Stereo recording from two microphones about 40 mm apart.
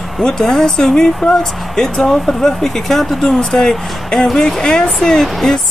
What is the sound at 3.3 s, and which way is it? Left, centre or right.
Speech, left.